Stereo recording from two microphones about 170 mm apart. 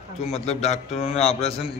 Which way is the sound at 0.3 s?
40° left (ahead or behind).